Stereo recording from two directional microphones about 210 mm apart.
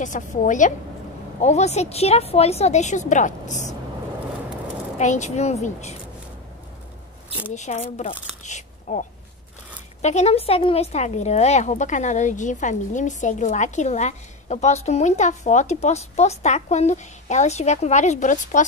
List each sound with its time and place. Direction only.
0.0 s a woman's voice: 35° left (ahead or behind)
4.9 s a woman's voice: 35° left (ahead or behind)
7.5 s a woman's voice: 35° left (ahead or behind)
8.5 s a sound: 35° left (ahead or behind)
10.0 s a woman's voice: 30° left (ahead or behind)